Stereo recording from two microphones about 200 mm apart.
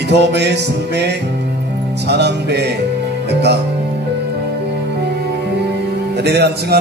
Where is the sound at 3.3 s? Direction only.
55° right (ahead or behind).